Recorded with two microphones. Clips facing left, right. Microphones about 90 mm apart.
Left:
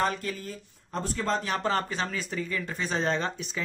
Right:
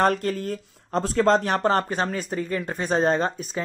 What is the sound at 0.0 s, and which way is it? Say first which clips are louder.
Speech: right 7 dB; 60° right (ahead or behind).